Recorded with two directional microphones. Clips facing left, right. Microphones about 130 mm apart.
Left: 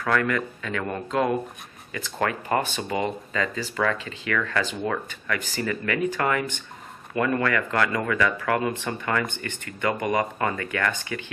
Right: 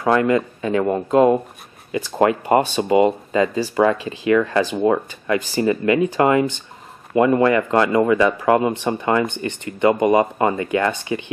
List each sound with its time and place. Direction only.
0.0 s speech: 25° right (ahead or behind)